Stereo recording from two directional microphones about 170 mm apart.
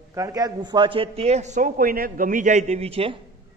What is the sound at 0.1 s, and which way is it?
A man's voice, 20° right (ahead or behind).